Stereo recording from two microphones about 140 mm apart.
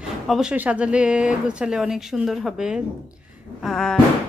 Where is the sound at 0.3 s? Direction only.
5° right (ahead or behind).